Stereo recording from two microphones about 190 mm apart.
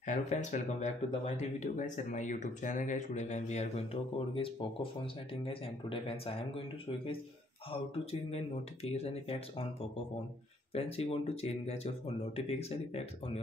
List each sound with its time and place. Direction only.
0.0 s speech: 40° left (ahead or behind)
8.0 s speech: 30° left (ahead or behind)
10.7 s speech: 30° left (ahead or behind)